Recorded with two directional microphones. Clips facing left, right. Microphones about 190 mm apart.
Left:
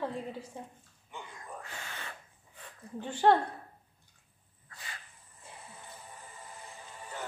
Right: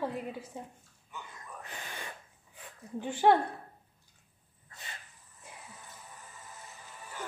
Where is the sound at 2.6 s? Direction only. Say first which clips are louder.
Right 3 dB; 10° right (ahead or behind).